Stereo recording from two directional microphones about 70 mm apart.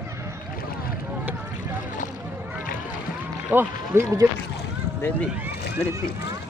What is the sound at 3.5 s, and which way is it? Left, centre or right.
Speech, right.